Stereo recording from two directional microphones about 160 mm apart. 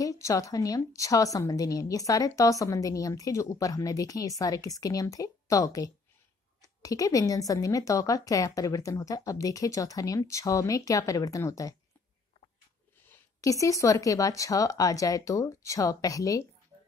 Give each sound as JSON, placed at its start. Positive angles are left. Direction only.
{"t": 0.0, "sound": "a woman's voice", "side_deg": 20}
{"t": 13.0, "sound": "a woman's voice", "side_deg": 15}